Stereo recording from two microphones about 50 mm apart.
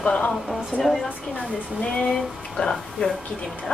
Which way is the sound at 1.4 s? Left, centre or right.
Centre.